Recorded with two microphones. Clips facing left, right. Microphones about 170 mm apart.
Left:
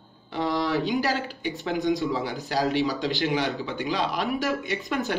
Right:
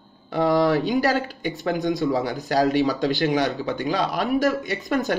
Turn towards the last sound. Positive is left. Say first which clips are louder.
# right 4 dB
turn(degrees=-40)  # may be behind; listen again after turning